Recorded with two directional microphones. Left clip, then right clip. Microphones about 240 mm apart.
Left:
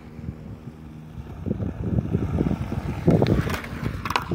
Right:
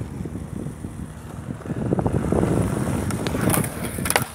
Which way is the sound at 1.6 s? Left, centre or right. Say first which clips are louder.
Right 6 dB; left.